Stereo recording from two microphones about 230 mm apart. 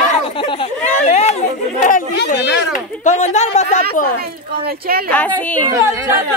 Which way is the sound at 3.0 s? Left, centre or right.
Left.